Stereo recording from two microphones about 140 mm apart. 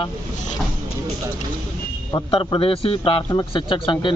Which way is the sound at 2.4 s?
40° left (ahead or behind).